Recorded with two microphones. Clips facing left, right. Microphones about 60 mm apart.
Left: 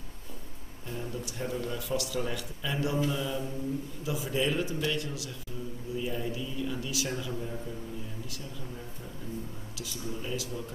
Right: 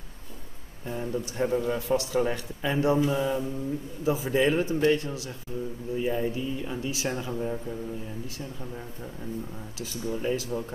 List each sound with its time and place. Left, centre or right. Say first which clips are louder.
0.8 s a man's voice: right 6 dB; right
9.8 s a man's voice: right 6 dB; right